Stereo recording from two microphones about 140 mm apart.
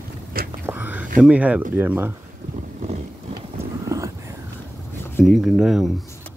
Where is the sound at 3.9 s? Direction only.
20° right (ahead or behind).